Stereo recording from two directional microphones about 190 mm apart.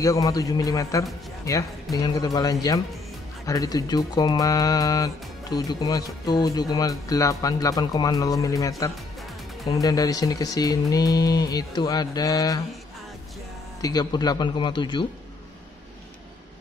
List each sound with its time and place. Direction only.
0.0 s a man's voice: 15° left (ahead or behind)
13.7 s speech: 20° left (ahead or behind)